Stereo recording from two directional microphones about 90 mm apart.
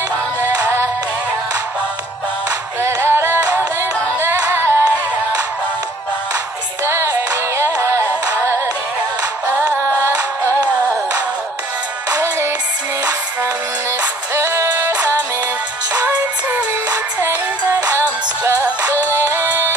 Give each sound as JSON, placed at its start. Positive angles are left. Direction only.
{"t": 0.4, "sound": "music", "side_deg": -25}
{"t": 2.8, "sound": "music", "side_deg": -25}
{"t": 7.7, "sound": "music", "side_deg": -30}
{"t": 9.6, "sound": "music", "side_deg": -25}
{"t": 12.2, "sound": "music", "side_deg": -30}
{"t": 14.3, "sound": "music", "side_deg": -30}
{"t": 16.0, "sound": "music", "side_deg": -20}
{"t": 19.1, "sound": "music", "side_deg": -25}